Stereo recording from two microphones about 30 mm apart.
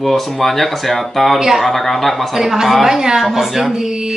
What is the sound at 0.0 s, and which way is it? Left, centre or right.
Speech, centre.